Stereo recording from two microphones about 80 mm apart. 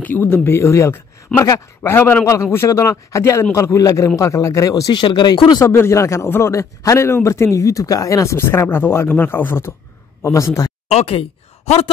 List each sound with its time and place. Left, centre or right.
0.0 s speech: left
4.9 s speech: left
5.7 s speech: left
10.2 s speech: left